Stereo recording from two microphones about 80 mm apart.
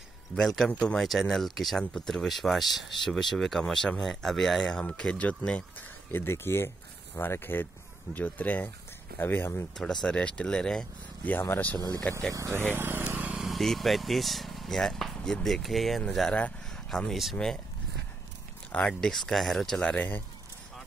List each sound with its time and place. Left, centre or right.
0.4 s speech: centre
6.1 s speech: left
10.0 s speech: centre
12.1 s speech: centre
12.4 s speech: right
12.7 s vehicle: right
13.4 s speech: centre
18.7 s speech: centre
19.8 s speech: centre